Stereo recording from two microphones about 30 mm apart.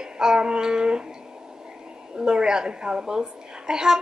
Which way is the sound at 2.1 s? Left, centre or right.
Right.